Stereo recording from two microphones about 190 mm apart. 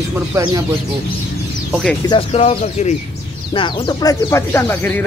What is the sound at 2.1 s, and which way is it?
Speech, 30° left (ahead or behind).